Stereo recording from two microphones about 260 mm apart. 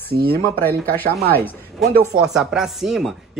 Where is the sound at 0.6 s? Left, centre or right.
Centre.